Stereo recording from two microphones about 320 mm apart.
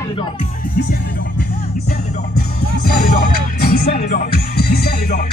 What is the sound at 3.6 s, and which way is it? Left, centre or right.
Music, left.